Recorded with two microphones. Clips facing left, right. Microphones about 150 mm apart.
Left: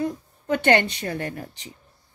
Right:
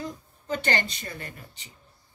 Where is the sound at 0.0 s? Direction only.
65° left (ahead or behind); by 1.7 s 80° left.